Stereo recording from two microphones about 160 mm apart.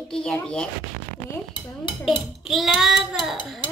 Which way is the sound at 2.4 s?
Centre (ahead or behind).